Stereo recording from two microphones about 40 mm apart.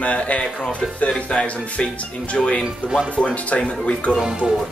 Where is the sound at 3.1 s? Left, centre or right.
Left.